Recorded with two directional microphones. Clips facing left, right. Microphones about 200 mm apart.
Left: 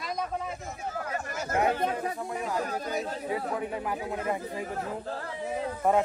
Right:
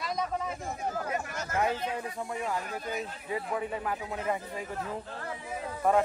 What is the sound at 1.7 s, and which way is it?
Speech, 50° left (ahead or behind).